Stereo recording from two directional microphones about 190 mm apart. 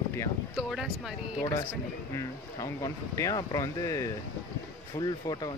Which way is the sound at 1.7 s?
15° left (ahead or behind).